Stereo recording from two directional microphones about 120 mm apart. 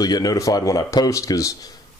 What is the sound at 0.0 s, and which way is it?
Speech, 30° left (ahead or behind).